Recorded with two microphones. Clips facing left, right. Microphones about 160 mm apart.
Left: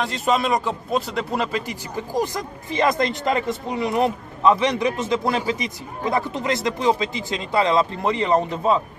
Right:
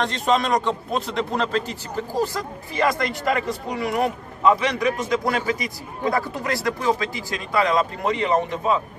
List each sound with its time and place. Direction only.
0.0 s a man's voice: 5° left (ahead or behind); by 8.7 s 30° left (ahead or behind)